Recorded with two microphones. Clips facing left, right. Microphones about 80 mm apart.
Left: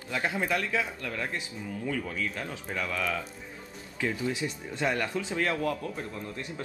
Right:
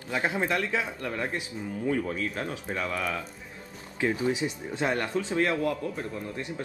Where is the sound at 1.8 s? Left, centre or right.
Right; by 6.4 s centre.